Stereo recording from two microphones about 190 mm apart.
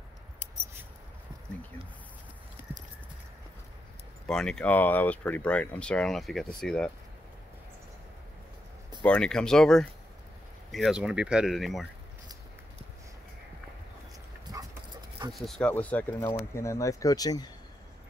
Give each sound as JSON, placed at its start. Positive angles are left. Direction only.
{"t": 2.7, "sound": "clip-clop", "side_deg": -10}
{"t": 4.3, "sound": "speech", "side_deg": 5}
{"t": 9.0, "sound": "speech", "side_deg": 5}
{"t": 14.5, "sound": "dog", "side_deg": -20}
{"t": 15.3, "sound": "speech", "side_deg": 0}